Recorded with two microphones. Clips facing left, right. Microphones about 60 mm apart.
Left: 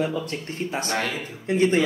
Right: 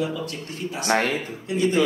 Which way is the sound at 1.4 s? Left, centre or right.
Left.